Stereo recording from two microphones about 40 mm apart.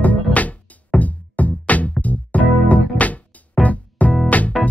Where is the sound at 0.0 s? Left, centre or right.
Left.